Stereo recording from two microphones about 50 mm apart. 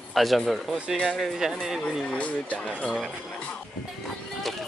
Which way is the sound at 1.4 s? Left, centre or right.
Centre.